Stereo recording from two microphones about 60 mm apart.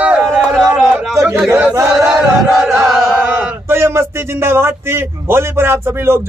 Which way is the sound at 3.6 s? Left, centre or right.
Right.